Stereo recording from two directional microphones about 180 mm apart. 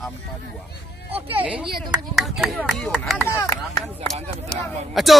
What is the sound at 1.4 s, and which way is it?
Speech, 5° right (ahead or behind).